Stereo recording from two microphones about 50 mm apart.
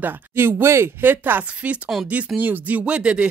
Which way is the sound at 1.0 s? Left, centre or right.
Right.